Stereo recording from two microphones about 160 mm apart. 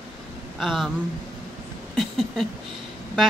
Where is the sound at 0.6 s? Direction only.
Centre (ahead or behind).